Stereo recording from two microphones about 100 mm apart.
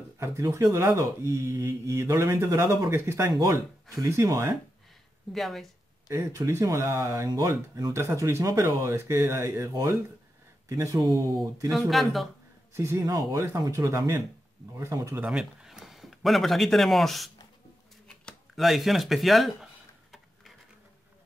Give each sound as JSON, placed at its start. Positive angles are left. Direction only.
{"t": 0.2, "sound": "speech", "side_deg": -30}
{"t": 5.3, "sound": "speech", "side_deg": 0}
{"t": 6.0, "sound": "speech", "side_deg": -30}
{"t": 11.0, "sound": "speech", "side_deg": -45}
{"t": 11.9, "sound": "speech", "side_deg": 0}
{"t": 12.7, "sound": "speech", "side_deg": -30}
{"t": 15.2, "sound": "speech", "side_deg": -5}
{"t": 18.6, "sound": "a sound", "side_deg": 0}